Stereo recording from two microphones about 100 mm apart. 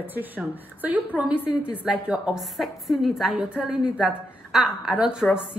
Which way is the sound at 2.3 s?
Centre (ahead or behind).